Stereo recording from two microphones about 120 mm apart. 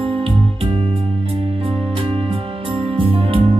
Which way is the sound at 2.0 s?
50° right (ahead or behind).